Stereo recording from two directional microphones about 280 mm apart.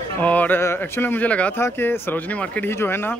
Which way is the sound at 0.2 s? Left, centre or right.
Centre.